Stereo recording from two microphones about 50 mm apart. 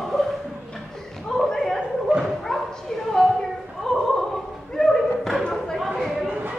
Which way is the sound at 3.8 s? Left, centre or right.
Centre.